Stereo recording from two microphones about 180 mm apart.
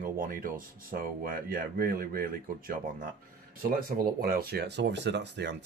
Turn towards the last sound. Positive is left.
turn(degrees=-75)  # may be behind; listen again after turning